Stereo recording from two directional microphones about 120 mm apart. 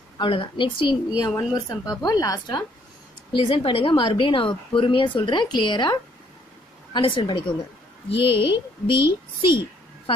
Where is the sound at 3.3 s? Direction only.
45° left (ahead or behind).